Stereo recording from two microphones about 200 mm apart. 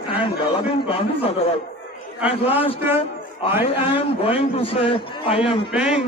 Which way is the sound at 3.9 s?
30° left (ahead or behind).